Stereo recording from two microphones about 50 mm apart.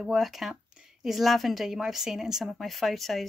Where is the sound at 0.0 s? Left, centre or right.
Centre.